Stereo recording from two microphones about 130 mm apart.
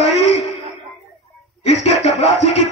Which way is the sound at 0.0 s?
55° left (ahead or behind).